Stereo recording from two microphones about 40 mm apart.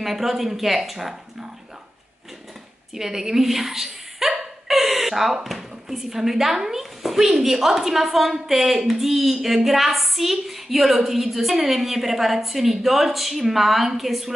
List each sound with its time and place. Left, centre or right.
0.0 s a woman's voice: centre
2.9 s a woman's voice: centre